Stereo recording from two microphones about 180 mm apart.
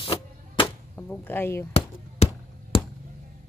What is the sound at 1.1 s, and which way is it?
Speech, 10° left (ahead or behind).